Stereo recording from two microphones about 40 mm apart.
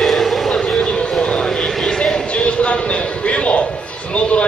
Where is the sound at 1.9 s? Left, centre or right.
Centre.